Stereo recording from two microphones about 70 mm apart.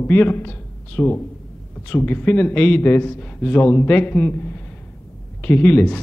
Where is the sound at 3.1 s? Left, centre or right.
Centre.